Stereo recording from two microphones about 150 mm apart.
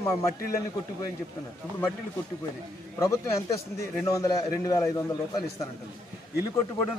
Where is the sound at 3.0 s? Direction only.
20° left (ahead or behind).